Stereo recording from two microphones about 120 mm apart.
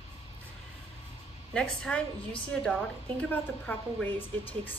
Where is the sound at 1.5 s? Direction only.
10° left (ahead or behind).